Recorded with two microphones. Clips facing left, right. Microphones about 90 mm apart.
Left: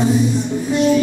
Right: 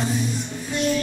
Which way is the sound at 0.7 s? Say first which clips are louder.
Left 8 dB; 5° left (ahead or behind).